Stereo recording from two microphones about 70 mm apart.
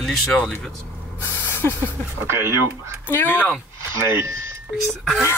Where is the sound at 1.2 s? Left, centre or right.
Left.